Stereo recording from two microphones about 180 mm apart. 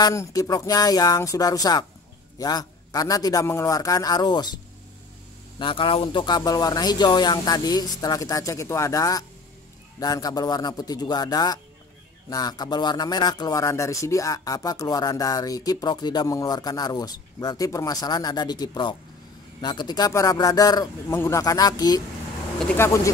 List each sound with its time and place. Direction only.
0.0 s speech: 20° left (ahead or behind)
5.6 s speech: 30° left (ahead or behind)